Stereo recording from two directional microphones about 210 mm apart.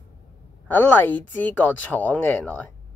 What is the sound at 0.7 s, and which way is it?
Speech, 10° left (ahead or behind).